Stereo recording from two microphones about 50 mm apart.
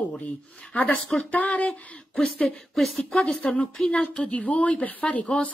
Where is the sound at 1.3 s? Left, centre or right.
Left.